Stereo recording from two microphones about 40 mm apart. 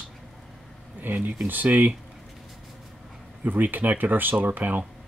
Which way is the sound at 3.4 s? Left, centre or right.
Right.